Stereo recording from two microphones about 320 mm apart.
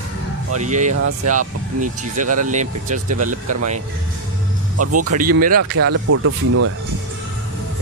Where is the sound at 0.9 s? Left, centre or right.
Right.